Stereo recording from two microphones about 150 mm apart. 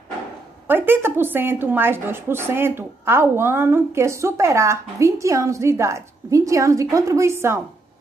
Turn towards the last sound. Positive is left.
turn(degrees=-15)  # may be behind; listen again after turning